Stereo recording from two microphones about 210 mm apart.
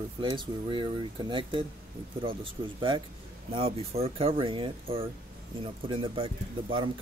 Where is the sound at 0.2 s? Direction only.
25° right (ahead or behind).